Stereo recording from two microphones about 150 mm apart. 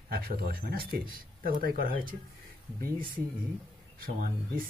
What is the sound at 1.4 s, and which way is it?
Speech, 70° right (ahead or behind).